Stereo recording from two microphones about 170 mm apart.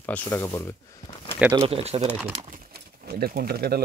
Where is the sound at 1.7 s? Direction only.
40° right (ahead or behind).